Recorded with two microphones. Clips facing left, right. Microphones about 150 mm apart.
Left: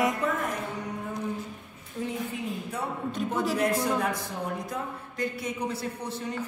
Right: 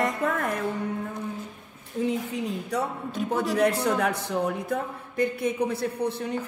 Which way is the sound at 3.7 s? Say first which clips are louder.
Right 2 dB; 70° right (ahead or behind).